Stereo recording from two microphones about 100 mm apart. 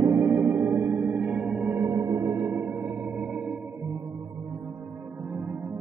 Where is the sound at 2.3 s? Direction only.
20° right (ahead or behind).